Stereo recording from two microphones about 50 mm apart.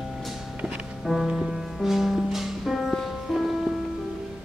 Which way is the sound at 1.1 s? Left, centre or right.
Centre.